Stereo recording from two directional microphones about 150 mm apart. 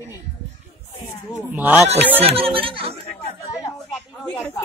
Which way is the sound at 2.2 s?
40° right (ahead or behind).